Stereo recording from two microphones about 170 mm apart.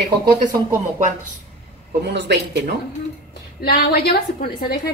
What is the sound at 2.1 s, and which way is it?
Speech, 90° right.